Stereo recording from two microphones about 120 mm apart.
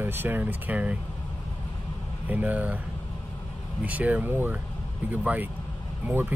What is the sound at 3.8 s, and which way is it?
Speech, 10° right (ahead or behind).